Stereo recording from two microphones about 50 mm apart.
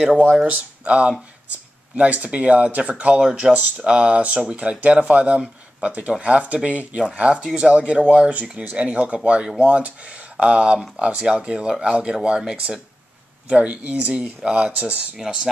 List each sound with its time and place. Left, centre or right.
0.5 s speech: right
3.4 s speech: centre
3.8 s speech: right
15.1 s speech: centre